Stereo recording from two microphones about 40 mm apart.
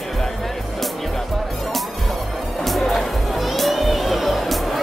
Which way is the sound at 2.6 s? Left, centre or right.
Centre.